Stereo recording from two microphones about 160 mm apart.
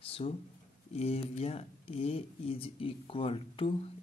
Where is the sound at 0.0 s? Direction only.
35° left (ahead or behind).